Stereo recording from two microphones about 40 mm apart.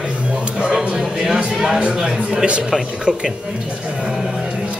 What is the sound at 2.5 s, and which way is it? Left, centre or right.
Speech, right.